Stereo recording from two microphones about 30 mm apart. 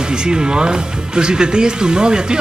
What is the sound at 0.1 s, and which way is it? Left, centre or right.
A woman's voice, right.